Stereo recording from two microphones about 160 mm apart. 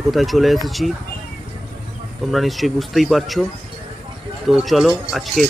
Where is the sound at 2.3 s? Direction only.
Centre (ahead or behind).